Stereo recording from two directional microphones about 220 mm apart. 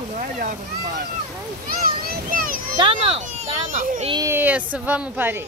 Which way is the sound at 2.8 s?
25° right (ahead or behind).